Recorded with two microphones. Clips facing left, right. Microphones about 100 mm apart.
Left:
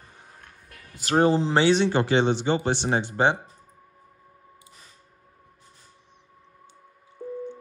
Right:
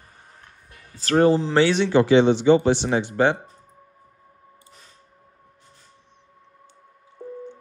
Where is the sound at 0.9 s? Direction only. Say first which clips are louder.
Right 3 dB; 15° left (ahead or behind).